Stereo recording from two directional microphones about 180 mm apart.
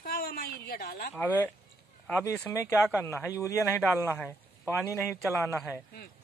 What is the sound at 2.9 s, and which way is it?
Speech, 15° left (ahead or behind).